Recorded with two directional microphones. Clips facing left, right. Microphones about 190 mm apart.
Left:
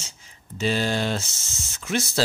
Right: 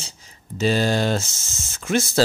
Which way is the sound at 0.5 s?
40° right (ahead or behind).